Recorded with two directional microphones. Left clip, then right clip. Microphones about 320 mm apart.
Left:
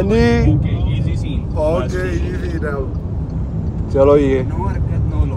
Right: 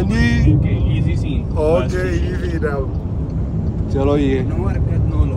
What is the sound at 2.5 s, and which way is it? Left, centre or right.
Vehicle, centre.